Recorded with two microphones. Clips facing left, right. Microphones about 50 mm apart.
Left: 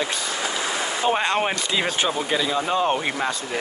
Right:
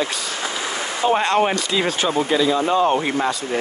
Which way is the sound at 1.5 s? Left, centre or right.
Left.